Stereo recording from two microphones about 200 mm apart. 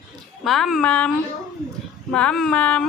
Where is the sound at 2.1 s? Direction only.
5° left (ahead or behind).